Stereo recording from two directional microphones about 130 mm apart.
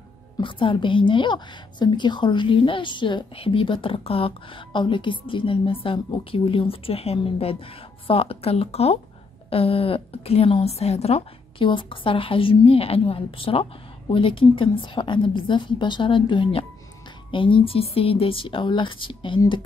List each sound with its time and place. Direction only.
0.4 s a woman's voice: 40° left (ahead or behind)